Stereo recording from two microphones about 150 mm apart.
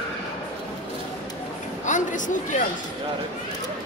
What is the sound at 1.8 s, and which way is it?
Speech, 60° left (ahead or behind).